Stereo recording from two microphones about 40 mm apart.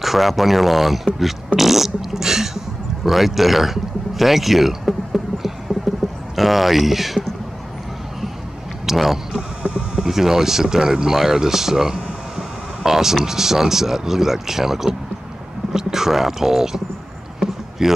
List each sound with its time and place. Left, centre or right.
0.0 s speech: centre
1.6 s fart: centre
3.1 s speech: centre
8.8 s speech: centre
9.6 s speech: right
10.0 s speech: centre
17.4 s rowboat: centre